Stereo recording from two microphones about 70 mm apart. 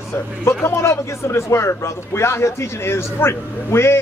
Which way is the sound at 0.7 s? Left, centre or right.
Left.